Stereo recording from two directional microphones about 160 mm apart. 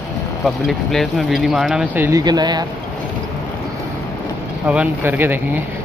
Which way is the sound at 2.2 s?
25° right (ahead or behind).